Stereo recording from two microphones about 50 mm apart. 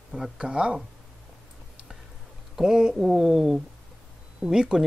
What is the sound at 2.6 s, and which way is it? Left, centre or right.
Speech, centre.